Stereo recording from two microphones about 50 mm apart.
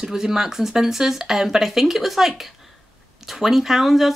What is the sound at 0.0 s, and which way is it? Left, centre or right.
Speech, centre.